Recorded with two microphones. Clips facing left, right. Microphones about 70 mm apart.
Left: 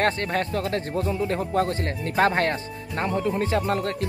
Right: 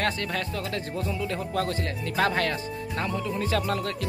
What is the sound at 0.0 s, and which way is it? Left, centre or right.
Speech, left.